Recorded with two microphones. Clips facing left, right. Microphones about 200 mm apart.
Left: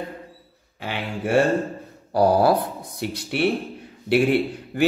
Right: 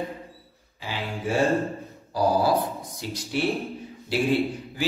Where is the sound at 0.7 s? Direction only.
65° left (ahead or behind).